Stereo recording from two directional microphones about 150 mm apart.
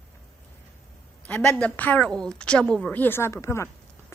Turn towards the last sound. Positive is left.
turn(degrees=20)  # may be behind; listen again after turning